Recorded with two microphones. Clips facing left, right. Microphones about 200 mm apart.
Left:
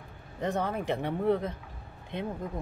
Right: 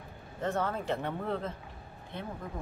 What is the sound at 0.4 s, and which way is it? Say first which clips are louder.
Speech: left 2 dB; 15° left (ahead or behind).